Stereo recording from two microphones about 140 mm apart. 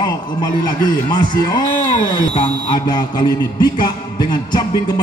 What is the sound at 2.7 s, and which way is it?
Speech, 30° left (ahead or behind).